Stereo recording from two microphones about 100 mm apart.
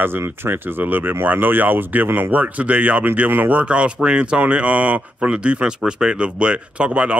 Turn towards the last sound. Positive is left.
turn(degrees=-10)  # may be behind; listen again after turning